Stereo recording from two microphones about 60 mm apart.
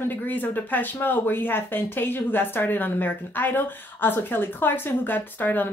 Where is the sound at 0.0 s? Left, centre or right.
Left.